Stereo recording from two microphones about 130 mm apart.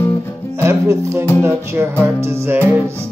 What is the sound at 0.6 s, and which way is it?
Speech, 20° right (ahead or behind).